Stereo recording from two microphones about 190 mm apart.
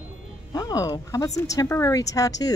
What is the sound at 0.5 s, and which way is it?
A woman's voice, 20° left (ahead or behind).